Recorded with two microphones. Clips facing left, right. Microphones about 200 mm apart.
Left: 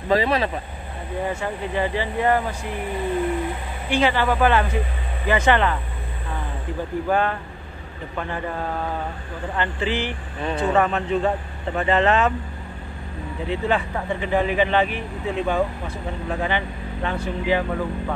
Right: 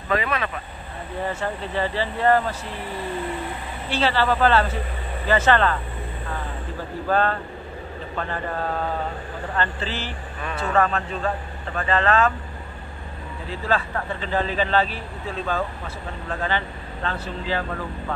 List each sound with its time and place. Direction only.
0.1 s speech: 30° left (ahead or behind)
1.2 s speech: 10° left (ahead or behind)
3.9 s speech: 15° left (ahead or behind)
7.1 s speech: 15° left (ahead or behind)
9.6 s a man's voice: 15° left (ahead or behind)
13.5 s speech: 20° left (ahead or behind)